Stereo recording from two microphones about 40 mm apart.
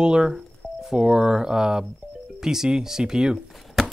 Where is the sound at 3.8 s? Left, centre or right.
Centre.